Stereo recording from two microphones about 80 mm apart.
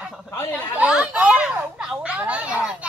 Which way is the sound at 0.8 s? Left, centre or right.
Centre.